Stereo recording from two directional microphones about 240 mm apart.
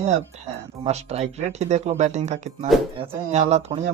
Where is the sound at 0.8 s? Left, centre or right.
Right.